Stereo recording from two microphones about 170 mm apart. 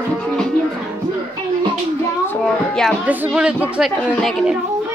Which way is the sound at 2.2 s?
5° left (ahead or behind).